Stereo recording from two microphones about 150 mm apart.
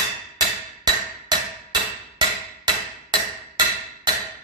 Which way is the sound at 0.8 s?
30° right (ahead or behind).